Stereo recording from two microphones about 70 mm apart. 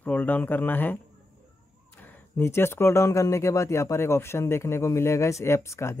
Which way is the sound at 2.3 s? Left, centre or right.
Left.